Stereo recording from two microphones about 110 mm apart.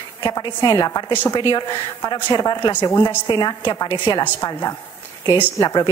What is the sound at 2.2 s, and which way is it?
A woman's voice, 40° left (ahead or behind).